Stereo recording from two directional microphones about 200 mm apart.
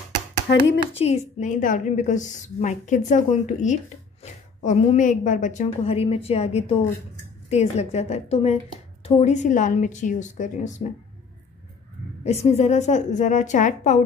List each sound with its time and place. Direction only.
0.9 s a woman's voice: 30° left (ahead or behind)
12.3 s a woman's voice: 35° left (ahead or behind)